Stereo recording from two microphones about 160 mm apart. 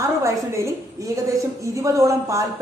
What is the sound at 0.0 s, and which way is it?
A woman's voice, 20° right (ahead or behind).